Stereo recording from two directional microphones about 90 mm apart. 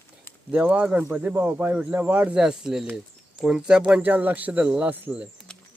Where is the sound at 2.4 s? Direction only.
5° right (ahead or behind).